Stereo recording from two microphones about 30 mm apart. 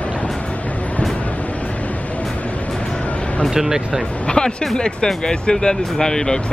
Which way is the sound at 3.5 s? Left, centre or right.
Centre.